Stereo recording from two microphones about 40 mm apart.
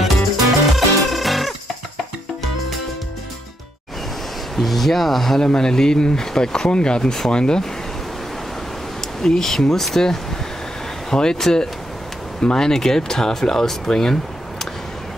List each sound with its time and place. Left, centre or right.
0.0 s music: centre
4.6 s speech: centre
5.4 s speech: centre
9.2 s speech: centre